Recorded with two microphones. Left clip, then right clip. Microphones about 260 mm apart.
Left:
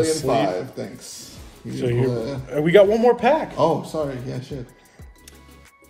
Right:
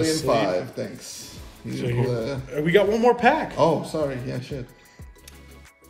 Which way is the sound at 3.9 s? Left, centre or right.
Right.